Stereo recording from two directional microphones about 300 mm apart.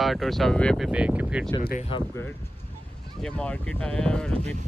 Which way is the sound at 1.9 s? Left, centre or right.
Centre.